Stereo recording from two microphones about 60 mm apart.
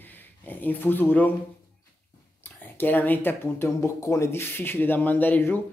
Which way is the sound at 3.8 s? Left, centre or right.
Left.